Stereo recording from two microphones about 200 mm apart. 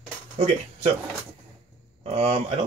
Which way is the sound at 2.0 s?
30° right (ahead or behind).